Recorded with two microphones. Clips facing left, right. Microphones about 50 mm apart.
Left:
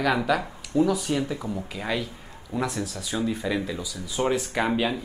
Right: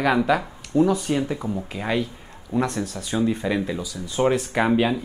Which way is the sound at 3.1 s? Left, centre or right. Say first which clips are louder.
Right 4 dB; centre.